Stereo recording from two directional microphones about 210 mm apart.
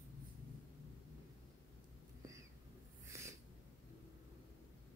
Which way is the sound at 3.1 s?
15° right (ahead or behind).